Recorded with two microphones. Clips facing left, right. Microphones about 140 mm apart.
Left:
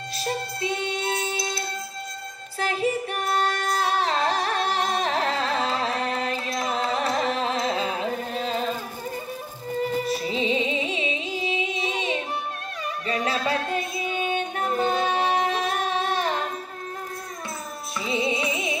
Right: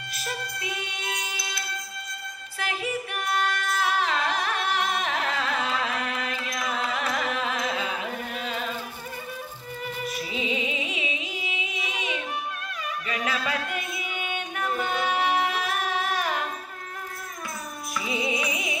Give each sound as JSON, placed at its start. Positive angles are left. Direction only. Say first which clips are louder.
{"t": 0.1, "sound": "music", "louder": "left 5 dB", "side_deg": 30}
{"t": 2.6, "sound": "singing", "louder": "left 6 dB", "side_deg": 35}
{"t": 9.8, "sound": "music", "louder": "left 8 dB", "side_deg": 35}
{"t": 18.0, "sound": "music", "louder": "left 4 dB", "side_deg": 25}